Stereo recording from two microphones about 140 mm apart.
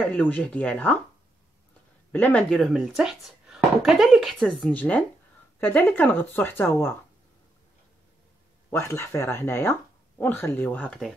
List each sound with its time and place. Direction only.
0.0 s speech: 10° left (ahead or behind)
2.1 s speech: 10° left (ahead or behind)
8.6 s speech: 20° left (ahead or behind)